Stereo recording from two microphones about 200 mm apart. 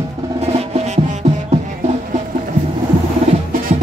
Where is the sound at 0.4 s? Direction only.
35° right (ahead or behind).